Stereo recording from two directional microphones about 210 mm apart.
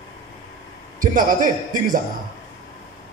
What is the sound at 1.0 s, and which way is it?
Speech, 40° right (ahead or behind).